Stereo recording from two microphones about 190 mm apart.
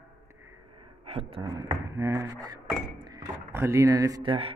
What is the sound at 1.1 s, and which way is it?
Speech, 30° right (ahead or behind).